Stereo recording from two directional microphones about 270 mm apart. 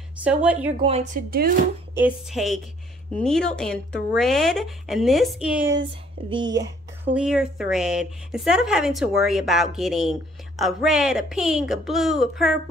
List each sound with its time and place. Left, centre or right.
0.2 s speech: centre
0.8 s a woman's voice: right
2.0 s speech: centre
6.3 s speech: centre
7.2 s speech: centre